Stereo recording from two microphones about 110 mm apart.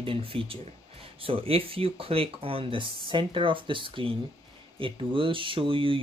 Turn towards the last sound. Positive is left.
turn(degrees=-55)  # may be behind; listen again after turning